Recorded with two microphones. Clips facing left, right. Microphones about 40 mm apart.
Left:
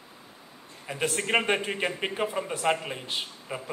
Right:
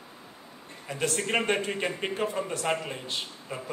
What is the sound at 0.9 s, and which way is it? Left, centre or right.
Speech, centre.